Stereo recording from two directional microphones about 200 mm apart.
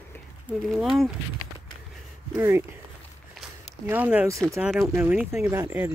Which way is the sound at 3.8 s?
10° right (ahead or behind).